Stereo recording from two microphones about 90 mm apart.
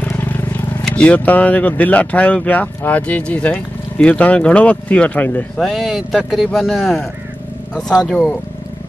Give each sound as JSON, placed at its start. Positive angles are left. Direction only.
{"t": 0.0, "sound": "vehicle", "side_deg": 20}
{"t": 0.8, "sound": "speech", "side_deg": 10}
{"t": 5.6, "sound": "speech", "side_deg": 0}
{"t": 8.1, "sound": "speech", "side_deg": 5}